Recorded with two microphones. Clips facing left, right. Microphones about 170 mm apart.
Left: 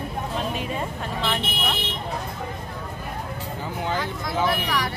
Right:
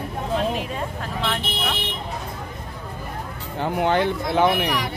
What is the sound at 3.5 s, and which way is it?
Speech, 65° right (ahead or behind).